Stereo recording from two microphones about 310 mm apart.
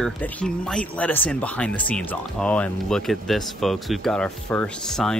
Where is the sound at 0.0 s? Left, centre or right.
Centre.